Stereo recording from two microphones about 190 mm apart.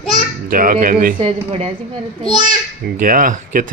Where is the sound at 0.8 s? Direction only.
45° right (ahead or behind).